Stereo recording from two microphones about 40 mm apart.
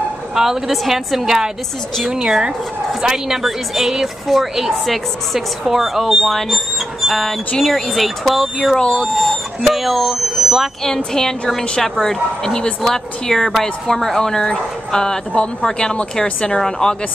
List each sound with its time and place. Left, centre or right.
0.3 s a woman's voice: centre
8.7 s speech: left
9.1 s a woman's voice: centre
11.1 s speech: centre